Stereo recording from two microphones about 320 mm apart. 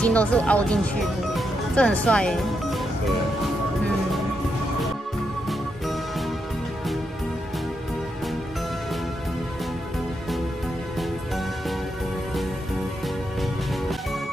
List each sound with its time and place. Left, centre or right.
0.0 s speech: centre
5.5 s music: centre